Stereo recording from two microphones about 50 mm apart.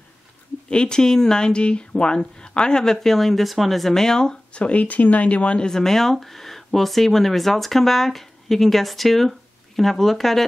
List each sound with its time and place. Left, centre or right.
0.7 s speech: centre
4.6 s speech: left
5.7 s speech: centre